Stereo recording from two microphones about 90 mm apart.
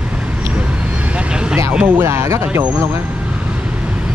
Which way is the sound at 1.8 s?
25° right (ahead or behind).